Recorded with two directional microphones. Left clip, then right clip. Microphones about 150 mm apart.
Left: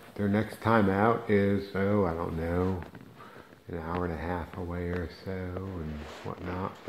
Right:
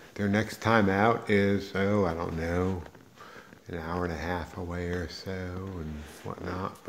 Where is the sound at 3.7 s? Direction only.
15° right (ahead or behind).